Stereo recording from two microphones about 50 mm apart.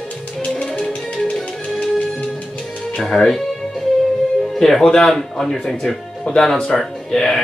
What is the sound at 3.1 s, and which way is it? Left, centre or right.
Music, centre.